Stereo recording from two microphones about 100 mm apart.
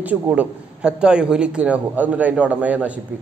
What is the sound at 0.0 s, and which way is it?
A woman's voice, 15° right (ahead or behind).